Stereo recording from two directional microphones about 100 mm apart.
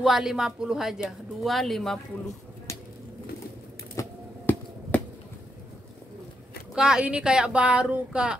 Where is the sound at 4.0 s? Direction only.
30° left (ahead or behind).